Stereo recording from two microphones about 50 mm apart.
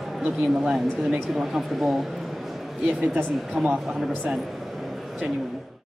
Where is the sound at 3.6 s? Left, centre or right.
Centre.